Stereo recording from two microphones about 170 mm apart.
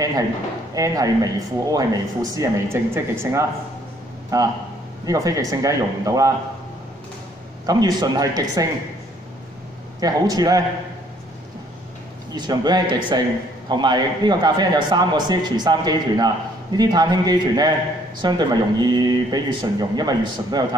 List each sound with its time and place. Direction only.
0.7 s speech: 20° right (ahead or behind)
7.6 s speech: 25° right (ahead or behind)
9.9 s speech: 20° right (ahead or behind)
12.4 s speech: 25° right (ahead or behind)